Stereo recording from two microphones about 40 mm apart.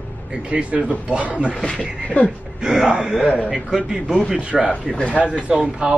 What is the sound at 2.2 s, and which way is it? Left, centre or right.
Speech, left.